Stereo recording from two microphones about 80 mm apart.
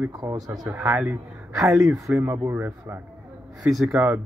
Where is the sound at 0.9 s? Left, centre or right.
Centre.